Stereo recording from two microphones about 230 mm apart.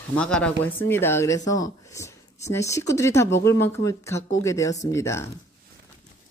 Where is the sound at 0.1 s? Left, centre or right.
Centre.